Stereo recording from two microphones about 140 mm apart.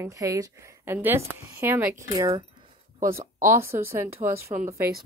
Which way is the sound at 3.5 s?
20° right (ahead or behind).